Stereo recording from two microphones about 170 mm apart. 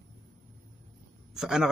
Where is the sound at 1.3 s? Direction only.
5° right (ahead or behind).